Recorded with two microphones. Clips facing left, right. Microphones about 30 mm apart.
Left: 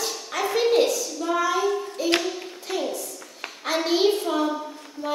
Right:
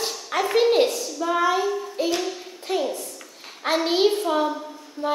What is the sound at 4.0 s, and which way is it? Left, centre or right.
Speech, centre.